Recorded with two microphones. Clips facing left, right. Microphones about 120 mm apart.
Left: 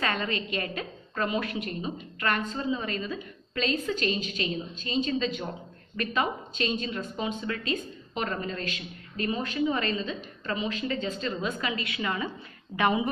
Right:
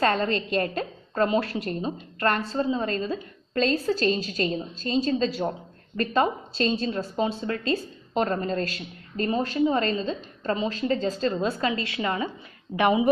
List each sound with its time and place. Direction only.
0.0 s a woman's voice: 35° right (ahead or behind); by 13.1 s 20° right (ahead or behind)